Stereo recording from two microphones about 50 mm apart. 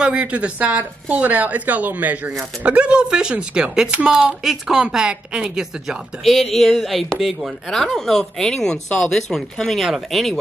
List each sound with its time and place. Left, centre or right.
0.0 s speech: right
2.6 s speech: right
4.4 s a woman's voice: centre
4.8 s a woman's voice: centre
6.2 s speech: centre
9.8 s speech: centre